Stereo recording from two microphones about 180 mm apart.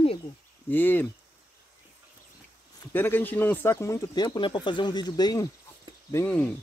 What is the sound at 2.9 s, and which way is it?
Speech, 10° left (ahead or behind).